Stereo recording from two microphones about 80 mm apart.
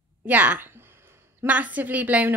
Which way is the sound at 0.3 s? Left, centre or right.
Right.